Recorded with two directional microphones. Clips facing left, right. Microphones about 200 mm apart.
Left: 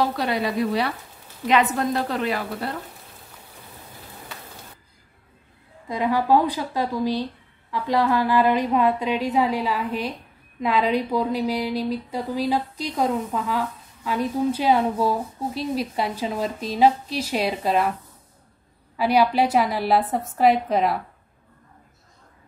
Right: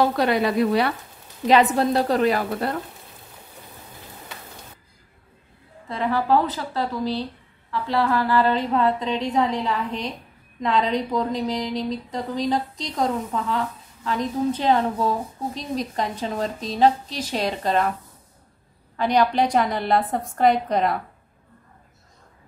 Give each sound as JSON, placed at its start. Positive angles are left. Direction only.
{"t": 0.2, "sound": "speech", "side_deg": -60}
{"t": 1.5, "sound": "a woman's voice", "side_deg": -35}
{"t": 5.9, "sound": "speech", "side_deg": 15}
{"t": 18.9, "sound": "a woman's voice", "side_deg": 5}